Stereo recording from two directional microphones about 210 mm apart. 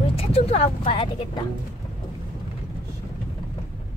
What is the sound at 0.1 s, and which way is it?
Speech, 30° left (ahead or behind).